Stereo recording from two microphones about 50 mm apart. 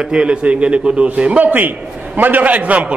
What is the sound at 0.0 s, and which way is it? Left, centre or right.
A man's voice, centre.